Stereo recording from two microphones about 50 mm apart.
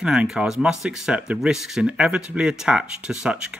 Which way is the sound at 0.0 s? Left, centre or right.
Centre.